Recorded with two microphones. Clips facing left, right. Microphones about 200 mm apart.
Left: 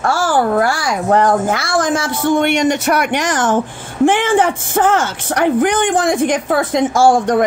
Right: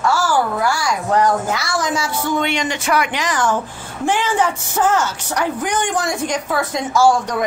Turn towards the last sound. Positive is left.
turn(degrees=55)  # may be behind; listen again after turning